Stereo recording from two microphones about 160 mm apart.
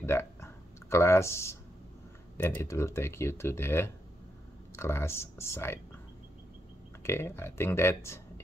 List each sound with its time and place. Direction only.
0.0 s a sound: 15° left (ahead or behind)
2.3 s speech: 15° left (ahead or behind)
7.0 s speech: 15° left (ahead or behind)